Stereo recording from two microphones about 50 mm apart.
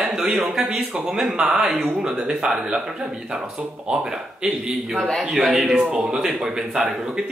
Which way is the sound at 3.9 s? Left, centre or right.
Centre.